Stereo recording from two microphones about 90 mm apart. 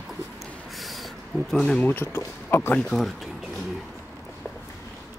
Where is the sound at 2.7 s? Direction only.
5° left (ahead or behind).